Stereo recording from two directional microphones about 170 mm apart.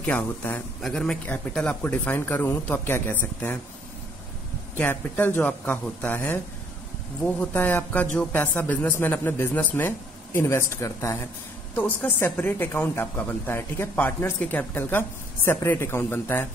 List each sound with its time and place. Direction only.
0.0 s speech: 10° left (ahead or behind)
4.7 s speech: 10° left (ahead or behind)